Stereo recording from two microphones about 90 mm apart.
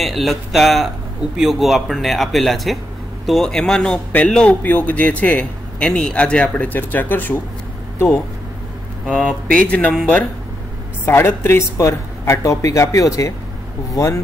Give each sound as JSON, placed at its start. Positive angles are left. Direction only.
{"t": 0.0, "sound": "a man's voice", "side_deg": 0}
{"t": 9.1, "sound": "a man's voice", "side_deg": 10}
{"t": 11.1, "sound": "speech", "side_deg": 25}